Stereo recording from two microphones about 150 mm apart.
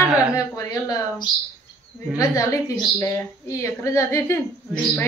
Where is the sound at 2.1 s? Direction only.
20° left (ahead or behind).